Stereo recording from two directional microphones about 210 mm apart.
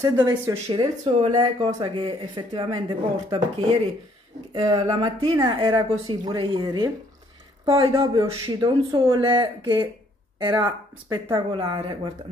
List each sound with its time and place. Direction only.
0.0 s speech: 20° right (ahead or behind)
1.0 s speech: 30° right (ahead or behind)
4.6 s speech: 20° right (ahead or behind)